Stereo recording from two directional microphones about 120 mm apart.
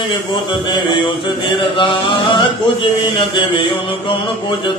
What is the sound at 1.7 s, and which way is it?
Chant, 45° left (ahead or behind).